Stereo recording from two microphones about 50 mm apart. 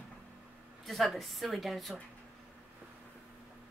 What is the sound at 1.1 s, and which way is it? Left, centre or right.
Speech, centre.